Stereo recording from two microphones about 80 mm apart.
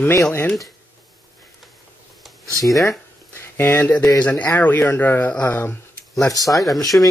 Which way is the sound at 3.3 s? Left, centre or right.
Left.